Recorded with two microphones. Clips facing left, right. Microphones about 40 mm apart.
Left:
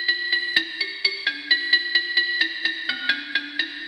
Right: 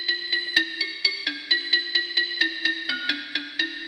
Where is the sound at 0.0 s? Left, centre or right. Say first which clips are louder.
Left 4 dB; centre.